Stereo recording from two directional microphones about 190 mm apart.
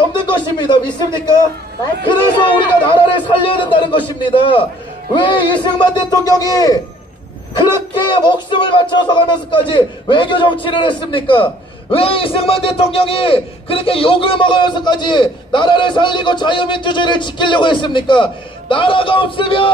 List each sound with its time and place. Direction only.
0.1 s a man's voice: 25° left (ahead or behind)